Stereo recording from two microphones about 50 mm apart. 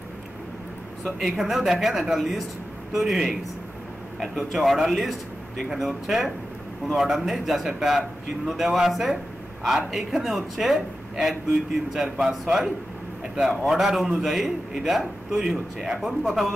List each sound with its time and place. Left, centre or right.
1.2 s a man's voice: centre